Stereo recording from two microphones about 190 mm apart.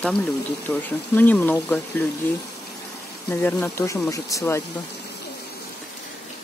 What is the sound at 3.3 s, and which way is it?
Speech, 10° left (ahead or behind).